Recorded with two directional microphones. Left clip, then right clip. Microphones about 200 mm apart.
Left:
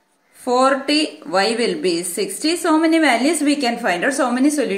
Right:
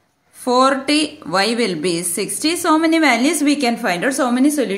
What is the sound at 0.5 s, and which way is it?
A woman's voice, 45° right (ahead or behind).